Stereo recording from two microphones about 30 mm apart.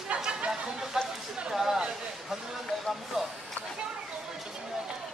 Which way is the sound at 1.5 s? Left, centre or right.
Centre.